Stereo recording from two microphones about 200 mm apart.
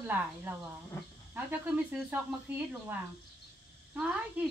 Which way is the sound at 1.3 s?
10° right (ahead or behind).